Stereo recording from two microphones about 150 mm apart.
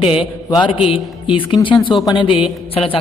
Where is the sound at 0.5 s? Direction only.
30° left (ahead or behind).